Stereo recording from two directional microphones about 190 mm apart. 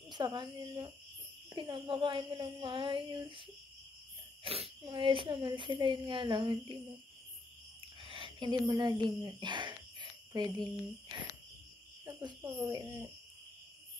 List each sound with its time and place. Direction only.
0.1 s speech: 25° right (ahead or behind)
8.0 s speech: 25° right (ahead or behind)
12.0 s cricket: 25° right (ahead or behind)
12.5 s speech: 25° right (ahead or behind)